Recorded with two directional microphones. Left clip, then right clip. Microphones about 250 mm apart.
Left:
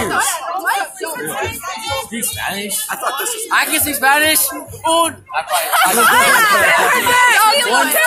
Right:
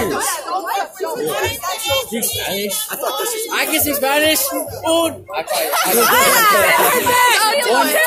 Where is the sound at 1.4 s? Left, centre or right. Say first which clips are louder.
Right 2 dB; right.